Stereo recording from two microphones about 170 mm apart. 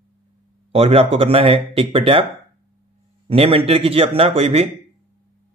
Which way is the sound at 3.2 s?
35° right (ahead or behind).